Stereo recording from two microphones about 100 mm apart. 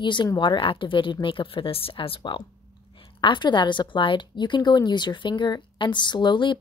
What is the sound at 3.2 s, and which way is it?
Speech, 50° left (ahead or behind).